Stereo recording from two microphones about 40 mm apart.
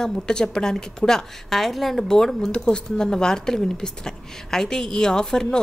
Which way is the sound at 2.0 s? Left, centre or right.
Centre.